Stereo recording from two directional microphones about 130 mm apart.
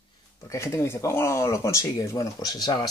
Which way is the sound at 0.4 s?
25° left (ahead or behind).